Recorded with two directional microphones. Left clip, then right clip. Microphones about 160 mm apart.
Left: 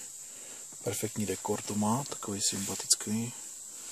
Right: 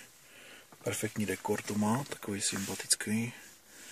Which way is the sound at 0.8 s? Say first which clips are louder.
Even; 20° left (ahead or behind).